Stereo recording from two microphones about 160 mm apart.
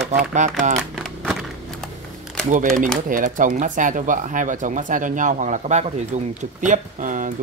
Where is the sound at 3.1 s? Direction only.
55° right (ahead or behind).